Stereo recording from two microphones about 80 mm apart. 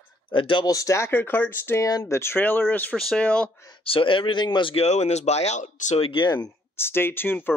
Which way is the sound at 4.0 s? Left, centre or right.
Left.